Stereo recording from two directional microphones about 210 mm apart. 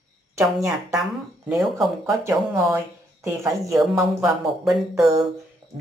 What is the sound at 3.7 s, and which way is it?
Speech, centre (ahead or behind).